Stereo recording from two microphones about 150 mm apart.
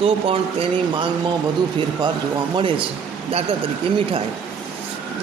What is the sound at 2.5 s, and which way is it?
Speech, 35° right (ahead or behind).